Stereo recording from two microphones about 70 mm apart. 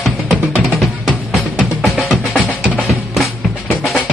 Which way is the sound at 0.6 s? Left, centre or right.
Centre.